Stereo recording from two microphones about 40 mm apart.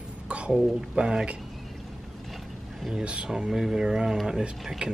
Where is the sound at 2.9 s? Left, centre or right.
Right.